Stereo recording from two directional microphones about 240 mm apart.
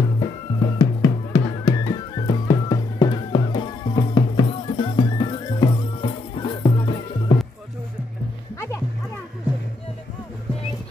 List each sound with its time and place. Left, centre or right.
0.2 s music: centre
8.5 s music: centre